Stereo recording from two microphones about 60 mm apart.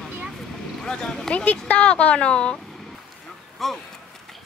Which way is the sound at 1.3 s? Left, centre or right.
Left.